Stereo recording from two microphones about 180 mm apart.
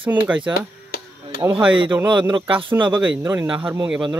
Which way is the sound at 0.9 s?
60° left (ahead or behind).